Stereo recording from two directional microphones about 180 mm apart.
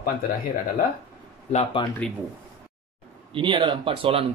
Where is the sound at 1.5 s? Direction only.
30° left (ahead or behind).